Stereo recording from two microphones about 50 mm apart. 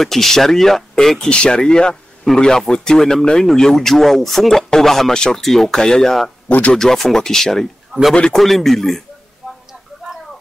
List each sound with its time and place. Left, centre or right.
0.0 s speech: centre
8.4 s speech: centre